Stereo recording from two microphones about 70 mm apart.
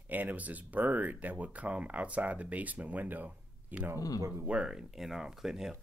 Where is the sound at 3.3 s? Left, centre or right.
Right.